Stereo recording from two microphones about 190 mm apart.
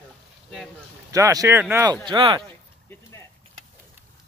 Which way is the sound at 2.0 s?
25° right (ahead or behind).